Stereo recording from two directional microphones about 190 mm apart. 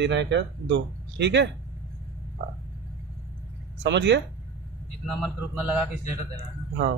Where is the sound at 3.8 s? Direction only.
65° right (ahead or behind).